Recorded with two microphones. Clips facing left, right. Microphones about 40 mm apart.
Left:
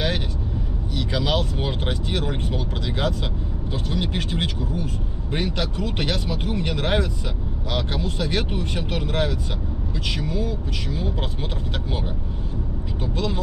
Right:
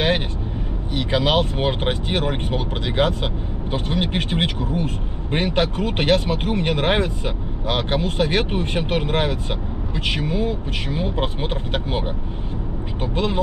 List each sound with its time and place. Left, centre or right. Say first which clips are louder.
0.9 s speech: right 5 dB; right
13.0 s speech: right 4 dB; right